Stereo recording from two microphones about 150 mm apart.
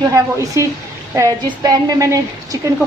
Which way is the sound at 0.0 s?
20° right (ahead or behind).